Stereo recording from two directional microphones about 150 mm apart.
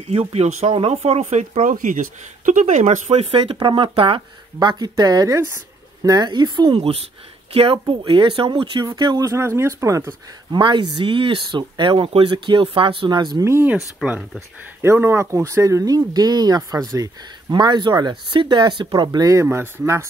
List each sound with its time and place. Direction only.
0.0 s speech: 45° right (ahead or behind)
13.5 s speech: 15° right (ahead or behind)
14.8 s speech: 15° right (ahead or behind)
19.4 s speech: 15° right (ahead or behind)